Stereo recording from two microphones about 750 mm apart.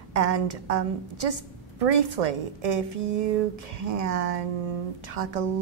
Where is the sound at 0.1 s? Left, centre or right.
Right.